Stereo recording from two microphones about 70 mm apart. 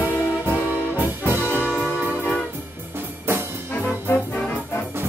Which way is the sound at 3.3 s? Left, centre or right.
Right.